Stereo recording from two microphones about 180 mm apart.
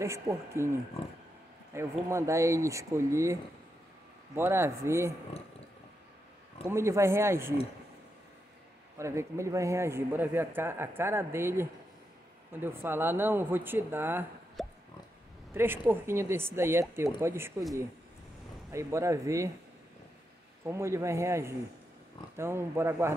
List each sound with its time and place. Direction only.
0.0 s a man's voice: 15° right (ahead or behind)
1.7 s a man's voice: 15° right (ahead or behind)
4.4 s a man's voice: 15° right (ahead or behind)
6.7 s a man's voice: 15° right (ahead or behind)
8.9 s a man's voice: 15° right (ahead or behind)
14.6 s pig: centre (ahead or behind)
15.5 s a man's voice: 10° right (ahead or behind)
18.7 s a man's voice: 15° right (ahead or behind)
20.6 s a man's voice: 15° right (ahead or behind)